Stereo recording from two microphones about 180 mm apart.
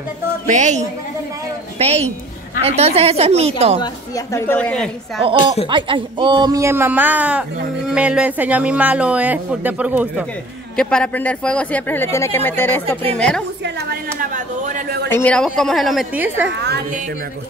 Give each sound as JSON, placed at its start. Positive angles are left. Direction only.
{"t": 0.5, "sound": "a woman's voice", "side_deg": -40}
{"t": 3.8, "sound": "speech", "side_deg": 15}
{"t": 4.6, "sound": "a woman's voice", "side_deg": 5}
{"t": 5.7, "sound": "speech", "side_deg": -25}
{"t": 10.8, "sound": "speech", "side_deg": 5}
{"t": 13.6, "sound": "a sound", "side_deg": -65}
{"t": 14.3, "sound": "a sound", "side_deg": -45}
{"t": 15.0, "sound": "a woman's voice", "side_deg": 10}